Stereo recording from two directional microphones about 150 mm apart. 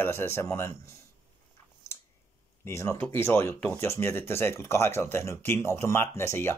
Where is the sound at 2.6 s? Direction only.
20° left (ahead or behind).